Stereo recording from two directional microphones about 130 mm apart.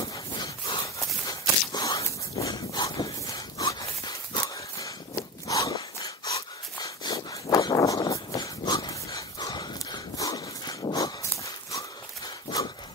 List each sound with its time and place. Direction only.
0.9 s walk: 25° left (ahead or behind)
12.4 s horse: 35° left (ahead or behind)